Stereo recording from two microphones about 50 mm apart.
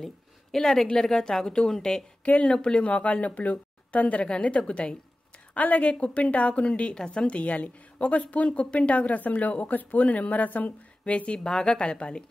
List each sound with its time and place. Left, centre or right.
0.0 s a woman's voice: centre
2.2 s a woman's voice: left
11.4 s a woman's voice: centre